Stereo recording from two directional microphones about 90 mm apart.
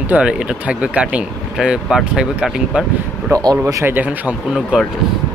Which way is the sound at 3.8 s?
20° right (ahead or behind).